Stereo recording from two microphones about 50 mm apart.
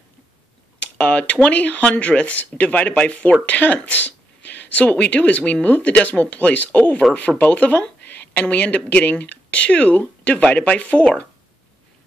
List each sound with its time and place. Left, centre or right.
0.7 s a woman's voice: left